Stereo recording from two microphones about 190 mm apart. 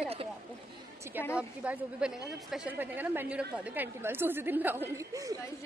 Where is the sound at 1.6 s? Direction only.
5° right (ahead or behind).